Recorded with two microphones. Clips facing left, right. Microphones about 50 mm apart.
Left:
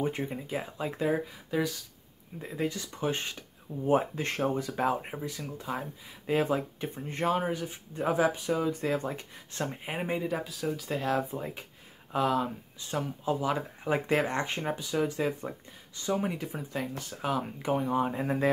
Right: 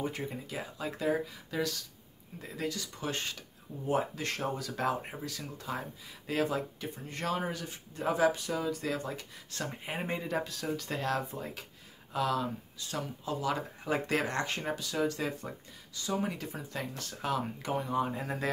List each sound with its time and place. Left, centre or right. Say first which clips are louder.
0.5 s speech: left 4 dB; left
6.2 s speech: left 4 dB; left